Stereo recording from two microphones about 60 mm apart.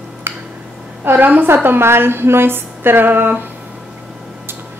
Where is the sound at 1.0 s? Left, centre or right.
Right.